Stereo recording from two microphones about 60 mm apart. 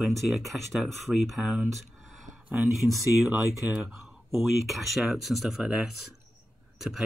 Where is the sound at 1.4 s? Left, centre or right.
Centre.